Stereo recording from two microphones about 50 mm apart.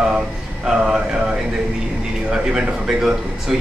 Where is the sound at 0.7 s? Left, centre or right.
Centre.